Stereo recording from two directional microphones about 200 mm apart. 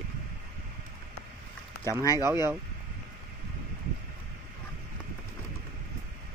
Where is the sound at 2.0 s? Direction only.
15° left (ahead or behind).